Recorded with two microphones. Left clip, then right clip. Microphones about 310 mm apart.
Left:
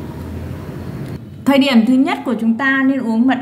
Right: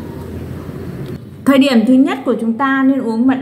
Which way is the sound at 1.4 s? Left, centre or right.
Centre.